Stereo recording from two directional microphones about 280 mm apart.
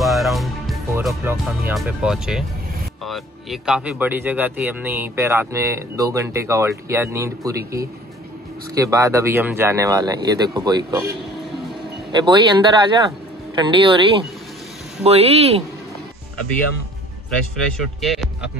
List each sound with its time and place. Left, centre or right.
0.0 s music: centre
3.1 s speech: centre
8.7 s speech: centre
12.1 s speech: centre
18.0 s music: centre